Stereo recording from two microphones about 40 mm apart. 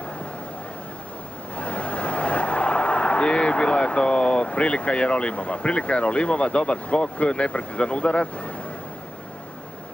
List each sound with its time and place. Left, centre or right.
1.6 s speech: left